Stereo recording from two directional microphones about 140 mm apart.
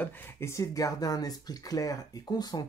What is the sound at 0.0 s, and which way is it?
Speech, 15° left (ahead or behind).